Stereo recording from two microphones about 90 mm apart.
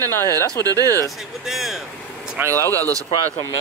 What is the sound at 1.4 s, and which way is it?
Speech, centre (ahead or behind).